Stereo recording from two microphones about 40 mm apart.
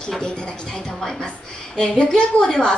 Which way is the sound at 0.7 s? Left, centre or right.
Centre.